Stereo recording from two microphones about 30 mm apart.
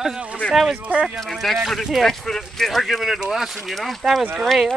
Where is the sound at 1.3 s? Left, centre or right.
Centre.